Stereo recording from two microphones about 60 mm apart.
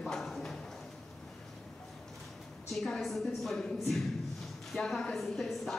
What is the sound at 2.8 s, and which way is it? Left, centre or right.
Speech, centre.